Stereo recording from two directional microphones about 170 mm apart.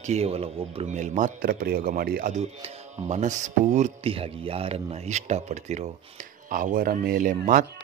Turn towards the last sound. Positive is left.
turn(degrees=-50)  # may be behind; listen again after turning